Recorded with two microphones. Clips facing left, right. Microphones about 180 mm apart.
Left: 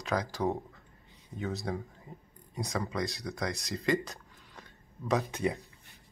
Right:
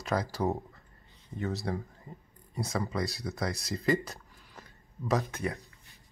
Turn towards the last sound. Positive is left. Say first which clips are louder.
# left 3 dB
turn(degrees=15)  # may be behind; listen again after turning